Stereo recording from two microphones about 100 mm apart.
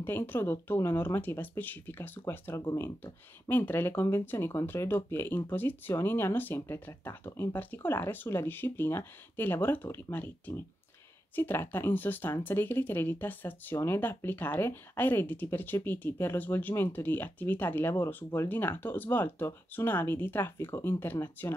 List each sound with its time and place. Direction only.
0.0 s speech: 20° left (ahead or behind)